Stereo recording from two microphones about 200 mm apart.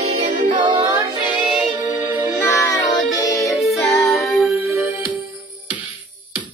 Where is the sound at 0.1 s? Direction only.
45° right (ahead or behind).